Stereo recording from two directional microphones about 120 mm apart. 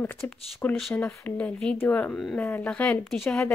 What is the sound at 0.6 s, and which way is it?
Speech, 15° left (ahead or behind).